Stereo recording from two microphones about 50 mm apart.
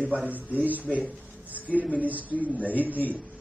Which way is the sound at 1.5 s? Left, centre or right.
Right.